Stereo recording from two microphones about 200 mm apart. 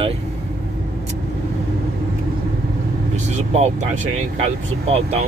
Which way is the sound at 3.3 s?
35° right (ahead or behind).